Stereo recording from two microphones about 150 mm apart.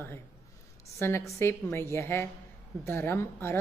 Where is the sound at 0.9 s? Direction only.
15° left (ahead or behind).